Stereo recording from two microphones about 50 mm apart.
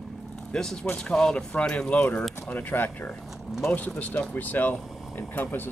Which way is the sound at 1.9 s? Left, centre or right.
Left.